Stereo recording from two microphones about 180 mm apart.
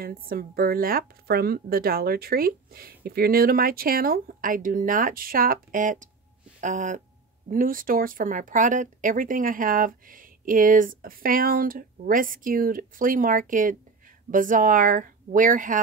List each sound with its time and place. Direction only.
0.0 s speech: 55° right (ahead or behind)